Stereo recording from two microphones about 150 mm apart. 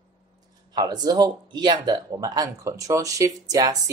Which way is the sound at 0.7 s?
25° right (ahead or behind).